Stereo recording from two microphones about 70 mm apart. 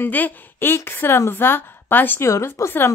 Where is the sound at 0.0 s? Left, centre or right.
Left.